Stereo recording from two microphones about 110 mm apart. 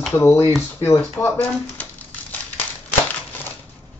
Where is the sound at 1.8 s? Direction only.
15° left (ahead or behind).